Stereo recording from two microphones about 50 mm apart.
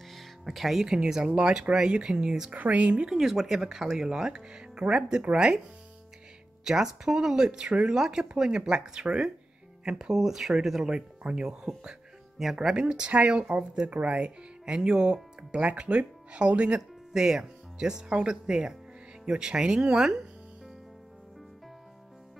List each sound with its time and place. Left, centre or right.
0.1 s speech: centre
2.5 s speech: right
3.2 s speech: centre
6.6 s speech: centre
12.5 s speech: centre
14.7 s speech: centre